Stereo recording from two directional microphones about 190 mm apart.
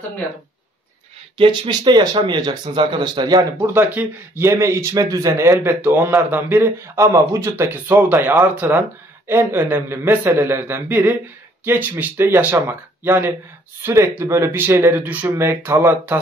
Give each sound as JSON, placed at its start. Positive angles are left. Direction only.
{"t": 1.4, "sound": "speech", "side_deg": -25}